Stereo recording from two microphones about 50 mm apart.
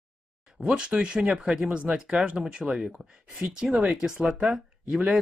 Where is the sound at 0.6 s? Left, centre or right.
Centre.